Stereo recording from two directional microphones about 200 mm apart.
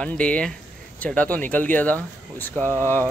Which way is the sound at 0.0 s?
5° left (ahead or behind).